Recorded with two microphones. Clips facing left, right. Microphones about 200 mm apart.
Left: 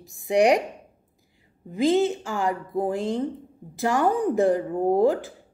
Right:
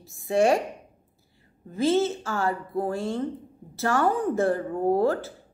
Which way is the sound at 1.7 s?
15° left (ahead or behind).